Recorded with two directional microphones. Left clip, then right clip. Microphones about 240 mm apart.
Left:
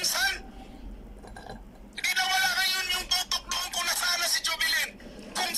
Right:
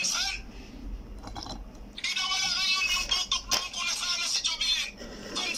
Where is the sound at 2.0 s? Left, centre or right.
Left.